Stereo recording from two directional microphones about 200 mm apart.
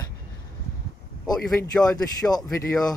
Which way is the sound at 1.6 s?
20° left (ahead or behind).